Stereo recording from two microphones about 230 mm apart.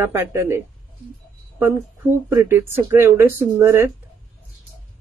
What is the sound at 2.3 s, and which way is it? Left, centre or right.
Speech, centre.